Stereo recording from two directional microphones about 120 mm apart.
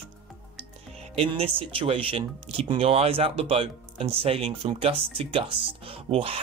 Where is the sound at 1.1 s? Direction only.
55° right (ahead or behind).